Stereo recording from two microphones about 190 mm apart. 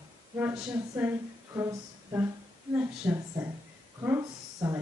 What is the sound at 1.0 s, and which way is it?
Speech, 10° right (ahead or behind).